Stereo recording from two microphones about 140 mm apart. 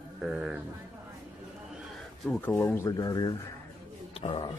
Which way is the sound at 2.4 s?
15° left (ahead or behind).